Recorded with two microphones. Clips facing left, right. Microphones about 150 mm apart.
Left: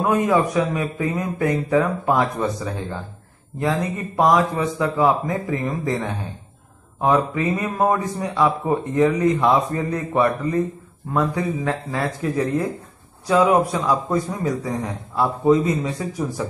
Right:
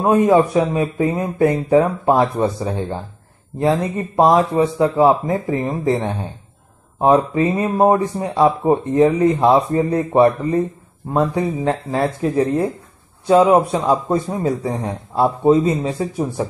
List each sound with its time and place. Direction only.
0.0 s speech: 30° right (ahead or behind)